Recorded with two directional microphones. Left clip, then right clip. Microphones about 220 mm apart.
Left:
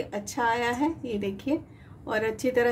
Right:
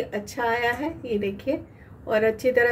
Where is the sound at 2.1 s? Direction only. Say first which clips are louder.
Right 5 dB; 45° left (ahead or behind).